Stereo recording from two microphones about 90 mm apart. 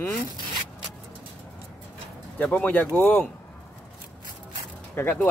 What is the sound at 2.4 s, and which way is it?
Speech, 20° left (ahead or behind).